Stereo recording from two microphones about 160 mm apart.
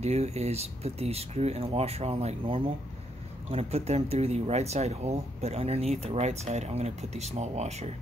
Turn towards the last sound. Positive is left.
turn(degrees=-45)  # may be behind; listen again after turning